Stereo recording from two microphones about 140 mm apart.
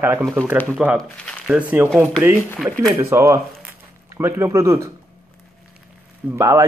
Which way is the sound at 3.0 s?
20° right (ahead or behind).